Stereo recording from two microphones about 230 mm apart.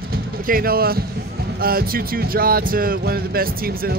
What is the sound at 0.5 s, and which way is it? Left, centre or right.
Speech, right.